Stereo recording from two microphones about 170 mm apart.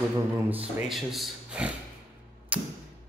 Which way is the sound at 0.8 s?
Centre (ahead or behind).